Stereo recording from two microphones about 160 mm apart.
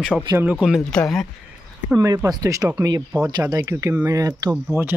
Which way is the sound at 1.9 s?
20° right (ahead or behind).